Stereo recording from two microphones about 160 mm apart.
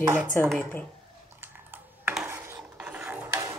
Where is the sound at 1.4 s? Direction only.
10° right (ahead or behind).